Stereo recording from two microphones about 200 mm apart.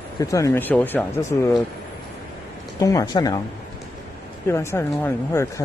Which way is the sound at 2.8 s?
20° left (ahead or behind).